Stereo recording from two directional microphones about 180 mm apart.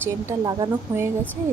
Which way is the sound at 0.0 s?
20° right (ahead or behind).